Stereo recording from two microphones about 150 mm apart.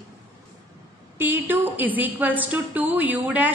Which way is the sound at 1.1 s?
15° right (ahead or behind).